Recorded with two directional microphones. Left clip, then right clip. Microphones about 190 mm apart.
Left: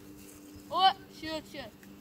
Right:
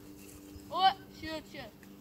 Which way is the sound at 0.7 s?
50° left (ahead or behind).